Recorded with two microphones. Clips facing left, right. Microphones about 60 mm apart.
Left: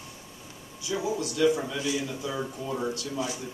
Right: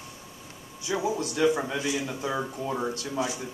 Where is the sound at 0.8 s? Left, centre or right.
Right.